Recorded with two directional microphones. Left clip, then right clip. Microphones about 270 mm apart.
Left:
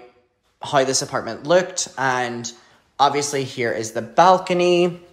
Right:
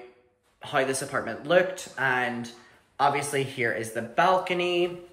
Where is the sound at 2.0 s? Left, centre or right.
Left.